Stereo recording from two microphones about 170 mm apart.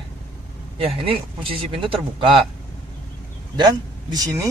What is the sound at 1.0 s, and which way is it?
Speech, 30° right (ahead or behind).